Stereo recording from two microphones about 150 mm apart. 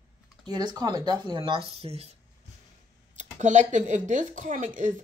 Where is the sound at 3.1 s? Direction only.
55° right (ahead or behind).